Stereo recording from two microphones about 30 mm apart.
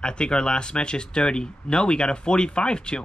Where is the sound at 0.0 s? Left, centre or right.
Left.